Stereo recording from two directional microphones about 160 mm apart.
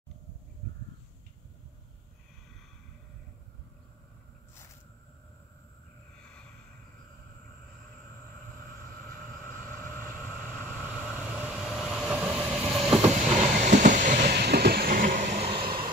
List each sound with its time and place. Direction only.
10.0 s vehicle: 10° right (ahead or behind)
13.0 s train: 45° right (ahead or behind)
14.3 s train: 85° right; by 15.5 s 60° right (ahead or behind)
15.6 s vehicle: 65° right (ahead or behind)